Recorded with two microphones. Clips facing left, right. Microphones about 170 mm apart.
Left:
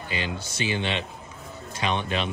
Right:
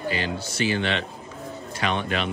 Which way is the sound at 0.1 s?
20° left (ahead or behind).